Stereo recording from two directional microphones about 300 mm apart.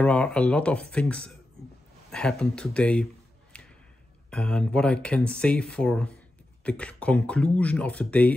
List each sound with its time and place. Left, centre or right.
0.0 s speech: centre
3.5 s a sound: centre
4.3 s speech: centre